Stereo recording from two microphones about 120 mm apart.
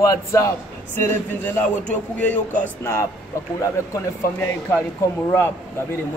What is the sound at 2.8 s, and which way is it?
Speech, 25° left (ahead or behind).